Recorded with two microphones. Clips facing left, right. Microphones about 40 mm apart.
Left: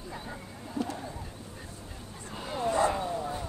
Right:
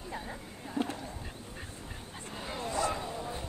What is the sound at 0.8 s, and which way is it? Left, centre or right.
Bird, right.